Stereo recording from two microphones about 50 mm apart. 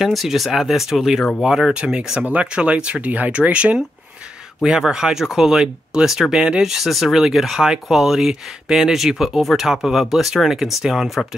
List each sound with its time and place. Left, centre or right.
0.0 s speech: centre; by 3.8 s right
4.6 s speech: centre